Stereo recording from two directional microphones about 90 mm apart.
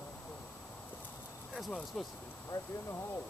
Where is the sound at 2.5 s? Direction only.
30° left (ahead or behind).